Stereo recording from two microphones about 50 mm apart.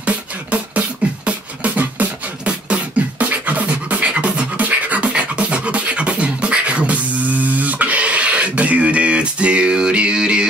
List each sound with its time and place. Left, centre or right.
0.0 s beatboxing: right